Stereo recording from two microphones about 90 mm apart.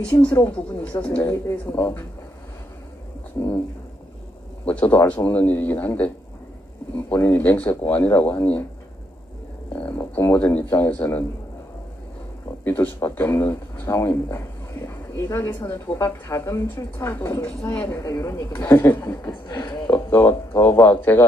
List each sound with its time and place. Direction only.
0.4 s a woman's voice: 15° left (ahead or behind)
3.4 s a woman's voice: 35° left (ahead or behind)
4.6 s a woman's voice: 15° left (ahead or behind)
7.2 s a man's voice: 20° left (ahead or behind)
9.7 s a man's voice: 15° left (ahead or behind)
12.6 s a woman's voice: 25° left (ahead or behind)
17.5 s a woman's voice: 15° left (ahead or behind)
17.9 s a woman's voice: 35° left (ahead or behind)
19.5 s speech: 50° left (ahead or behind)
20.1 s a man's voice: 25° left (ahead or behind)